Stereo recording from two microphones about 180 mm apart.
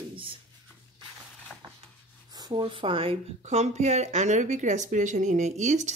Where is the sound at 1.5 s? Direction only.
5° left (ahead or behind).